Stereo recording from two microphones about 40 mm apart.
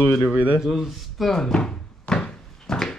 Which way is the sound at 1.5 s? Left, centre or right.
Centre.